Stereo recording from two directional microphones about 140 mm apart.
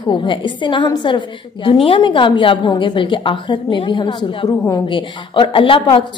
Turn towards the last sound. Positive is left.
turn(degrees=40)  # may be behind; listen again after turning